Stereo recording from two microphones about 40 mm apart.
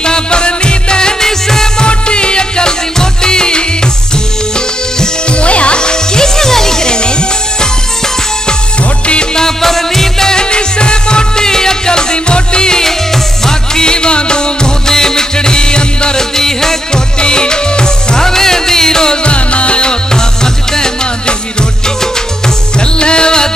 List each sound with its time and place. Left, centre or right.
0.0 s music: left
1.9 s music: left
5.4 s music: left
9.0 s music: left
19.2 s music: left
22.8 s music: left